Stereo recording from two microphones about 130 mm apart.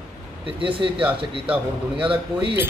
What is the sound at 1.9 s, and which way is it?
Speech, 45° right (ahead or behind).